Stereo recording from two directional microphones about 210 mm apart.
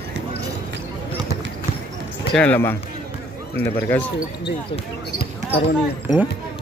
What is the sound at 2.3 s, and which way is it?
Speech, 10° left (ahead or behind).